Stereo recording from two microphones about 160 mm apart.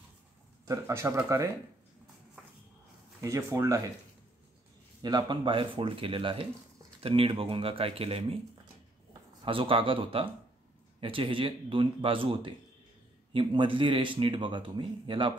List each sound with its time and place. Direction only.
0.7 s speech: 15° right (ahead or behind)
3.2 s speech: 20° right (ahead or behind)
5.0 s a man's voice: 25° right (ahead or behind)
9.4 s a man's voice: 35° right (ahead or behind)